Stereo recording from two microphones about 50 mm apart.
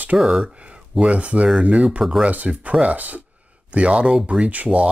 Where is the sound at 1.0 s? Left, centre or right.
Right.